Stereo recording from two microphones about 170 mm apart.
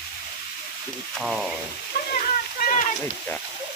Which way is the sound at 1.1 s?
Centre (ahead or behind).